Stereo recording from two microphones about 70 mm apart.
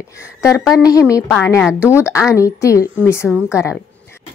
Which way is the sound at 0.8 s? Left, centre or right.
Left.